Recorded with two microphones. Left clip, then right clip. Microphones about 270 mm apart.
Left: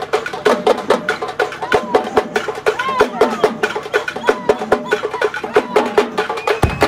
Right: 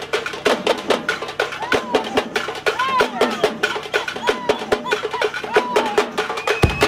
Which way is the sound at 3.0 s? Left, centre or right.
Centre.